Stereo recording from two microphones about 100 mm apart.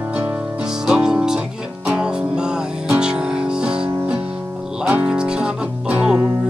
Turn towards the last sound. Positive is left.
turn(degrees=-10)  # may be behind; listen again after turning